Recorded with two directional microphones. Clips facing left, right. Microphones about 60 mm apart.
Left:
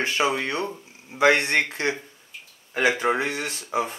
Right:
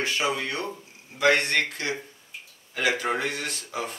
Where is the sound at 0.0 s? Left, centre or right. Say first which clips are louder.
Left 3 dB; left.